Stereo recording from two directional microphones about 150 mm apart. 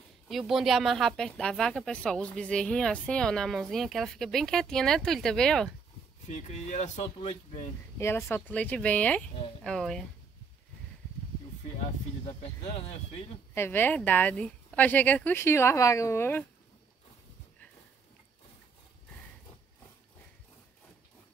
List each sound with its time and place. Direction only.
0.3 s speech: centre (ahead or behind)
6.3 s speech: 50° left (ahead or behind)
8.0 s a woman's voice: 15° left (ahead or behind)
12.6 s speech: 40° left (ahead or behind)
13.6 s a woman's voice: 15° left (ahead or behind)